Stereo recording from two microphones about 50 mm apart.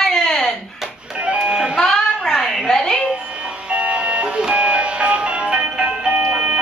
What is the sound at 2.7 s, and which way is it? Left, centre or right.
Speech, centre.